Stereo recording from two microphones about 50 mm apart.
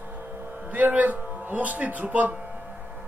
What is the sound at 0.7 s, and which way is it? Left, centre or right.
Speech, right.